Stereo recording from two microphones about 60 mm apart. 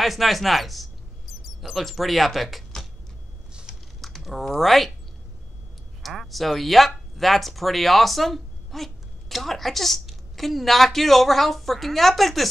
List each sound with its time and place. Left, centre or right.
0.0 s speech: centre
4.0 s speech: centre
6.0 s speech: centre